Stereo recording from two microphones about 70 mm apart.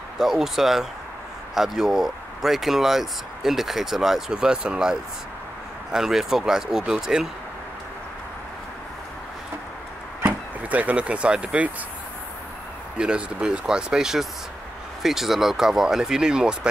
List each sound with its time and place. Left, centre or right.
0.2 s speech: centre
10.2 s speech: right
12.9 s speech: centre